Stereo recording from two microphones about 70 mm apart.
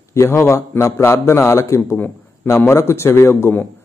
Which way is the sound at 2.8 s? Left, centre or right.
Left.